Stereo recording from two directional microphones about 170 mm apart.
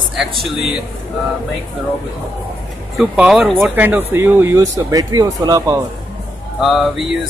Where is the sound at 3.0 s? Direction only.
Centre (ahead or behind); by 5.7 s 20° right (ahead or behind).